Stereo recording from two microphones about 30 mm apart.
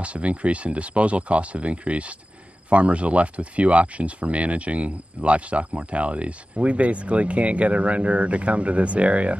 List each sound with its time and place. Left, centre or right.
0.0 s speech: right